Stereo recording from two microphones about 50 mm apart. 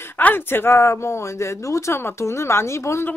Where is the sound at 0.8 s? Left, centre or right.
Left.